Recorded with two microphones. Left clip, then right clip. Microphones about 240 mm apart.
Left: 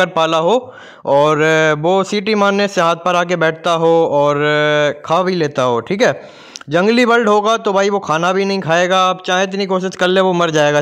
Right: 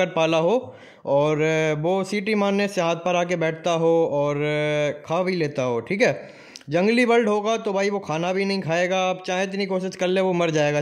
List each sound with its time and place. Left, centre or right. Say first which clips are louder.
0.0 s speech: left 7 dB; centre